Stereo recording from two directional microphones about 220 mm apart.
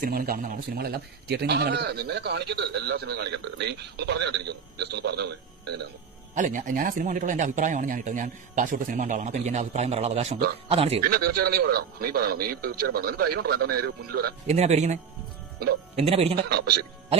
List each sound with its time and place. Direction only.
0.0 s a man's voice: 40° right (ahead or behind)
6.3 s speech: 35° right (ahead or behind)
11.1 s a man's voice: 45° right (ahead or behind)
14.5 s speech: 30° right (ahead or behind)
16.0 s speech: 25° right (ahead or behind)
16.4 s a man's voice: 45° right (ahead or behind)